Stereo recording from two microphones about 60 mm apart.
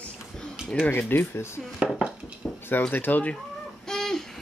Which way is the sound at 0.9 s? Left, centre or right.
Left.